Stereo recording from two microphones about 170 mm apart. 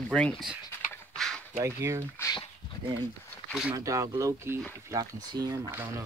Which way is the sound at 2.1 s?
15° left (ahead or behind).